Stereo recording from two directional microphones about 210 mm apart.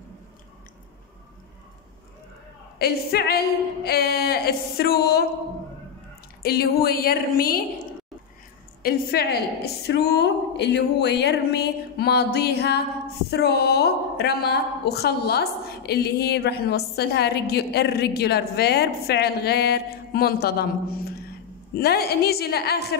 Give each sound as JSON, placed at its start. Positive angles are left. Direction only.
{"t": 2.8, "sound": "a woman's voice", "side_deg": 45}
{"t": 6.4, "sound": "a woman's voice", "side_deg": 45}
{"t": 8.8, "sound": "a woman's voice", "side_deg": 50}